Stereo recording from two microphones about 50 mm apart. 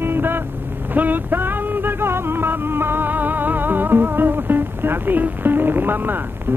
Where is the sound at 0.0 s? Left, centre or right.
Right.